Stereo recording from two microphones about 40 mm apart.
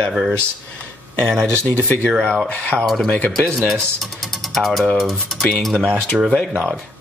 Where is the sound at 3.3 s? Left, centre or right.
Centre.